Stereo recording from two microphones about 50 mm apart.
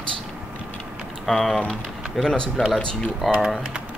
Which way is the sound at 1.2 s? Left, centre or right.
Centre.